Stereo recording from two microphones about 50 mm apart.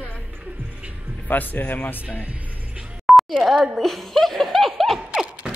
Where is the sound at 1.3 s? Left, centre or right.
Left.